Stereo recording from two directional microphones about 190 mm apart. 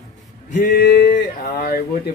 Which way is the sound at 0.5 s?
45° left (ahead or behind).